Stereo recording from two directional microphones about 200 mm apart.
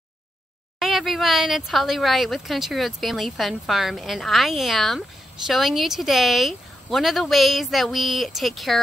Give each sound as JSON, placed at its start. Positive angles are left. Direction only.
{"t": 0.7, "sound": "speech", "side_deg": 0}